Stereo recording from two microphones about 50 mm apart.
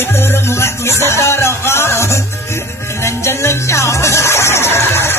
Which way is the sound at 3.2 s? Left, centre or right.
Left.